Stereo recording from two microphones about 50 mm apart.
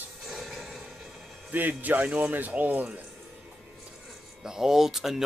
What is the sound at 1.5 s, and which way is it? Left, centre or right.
Speech, right.